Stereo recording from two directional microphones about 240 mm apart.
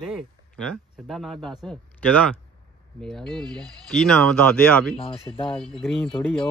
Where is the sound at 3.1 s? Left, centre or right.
Centre.